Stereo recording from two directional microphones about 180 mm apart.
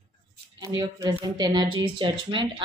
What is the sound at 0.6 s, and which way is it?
A woman's voice, 20° right (ahead or behind).